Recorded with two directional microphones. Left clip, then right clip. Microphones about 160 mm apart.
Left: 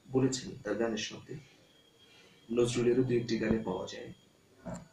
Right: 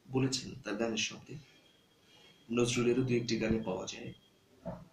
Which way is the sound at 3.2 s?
10° right (ahead or behind).